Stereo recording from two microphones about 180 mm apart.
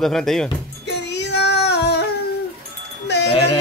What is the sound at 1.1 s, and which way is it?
Child singing, 70° left (ahead or behind).